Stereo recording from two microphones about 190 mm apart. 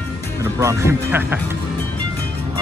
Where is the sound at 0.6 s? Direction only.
15° right (ahead or behind).